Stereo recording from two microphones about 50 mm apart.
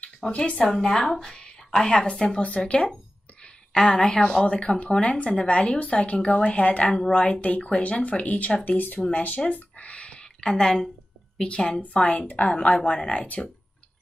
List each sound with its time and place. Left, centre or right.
0.0 s a sound: left
0.4 s a woman's voice: centre
3.7 s a woman's voice: centre; by 9.4 s left
9.5 s a sound: left
11.4 s a woman's voice: centre
12.5 s a woman's voice: centre